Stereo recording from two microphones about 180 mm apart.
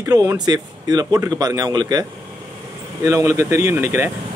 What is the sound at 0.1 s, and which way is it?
Speech, 20° right (ahead or behind).